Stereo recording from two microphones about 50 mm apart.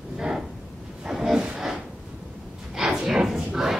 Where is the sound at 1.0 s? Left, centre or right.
Centre.